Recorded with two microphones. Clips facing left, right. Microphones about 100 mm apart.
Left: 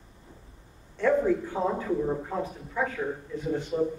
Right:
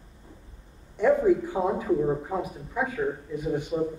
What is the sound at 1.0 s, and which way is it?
Speech, 15° right (ahead or behind).